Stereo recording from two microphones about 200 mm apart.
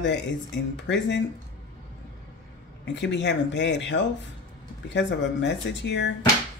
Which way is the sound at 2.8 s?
60° left (ahead or behind).